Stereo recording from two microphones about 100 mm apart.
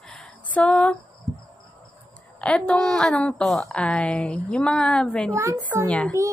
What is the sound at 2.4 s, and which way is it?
A woman's voice, 10° left (ahead or behind).